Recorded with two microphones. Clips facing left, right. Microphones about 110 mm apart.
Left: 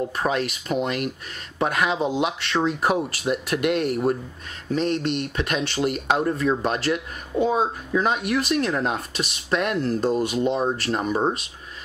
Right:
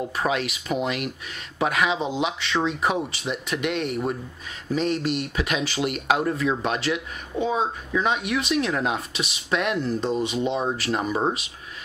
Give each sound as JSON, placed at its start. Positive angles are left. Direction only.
{"t": 0.1, "sound": "speech", "side_deg": 0}